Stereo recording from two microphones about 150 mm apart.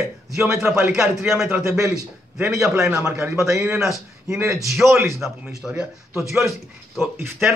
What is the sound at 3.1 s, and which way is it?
Speech, 20° right (ahead or behind).